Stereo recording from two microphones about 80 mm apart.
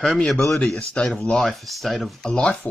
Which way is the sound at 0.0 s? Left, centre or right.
Centre.